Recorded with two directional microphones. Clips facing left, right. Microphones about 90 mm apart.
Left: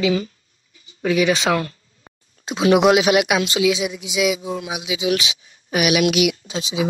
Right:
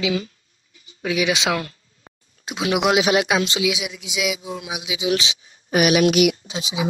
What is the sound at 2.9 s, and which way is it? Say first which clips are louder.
Speech: left 2 dB; 25° right (ahead or behind).